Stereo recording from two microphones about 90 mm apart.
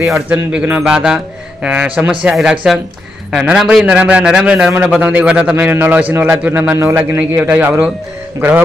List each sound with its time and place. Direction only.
0.3 s a man's voice: 20° right (ahead or behind)